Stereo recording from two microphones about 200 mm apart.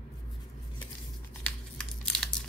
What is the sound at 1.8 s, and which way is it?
Crumpling, centre (ahead or behind).